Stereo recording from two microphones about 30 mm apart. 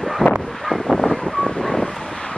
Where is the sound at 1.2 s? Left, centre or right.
Left.